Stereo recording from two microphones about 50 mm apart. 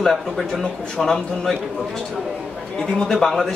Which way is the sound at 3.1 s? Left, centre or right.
Centre.